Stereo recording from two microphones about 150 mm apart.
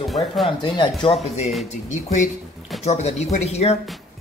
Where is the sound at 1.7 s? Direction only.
55° left (ahead or behind).